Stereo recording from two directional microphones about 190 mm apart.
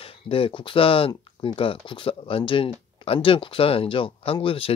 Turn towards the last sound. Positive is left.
turn(degrees=30)  # may be behind; listen again after turning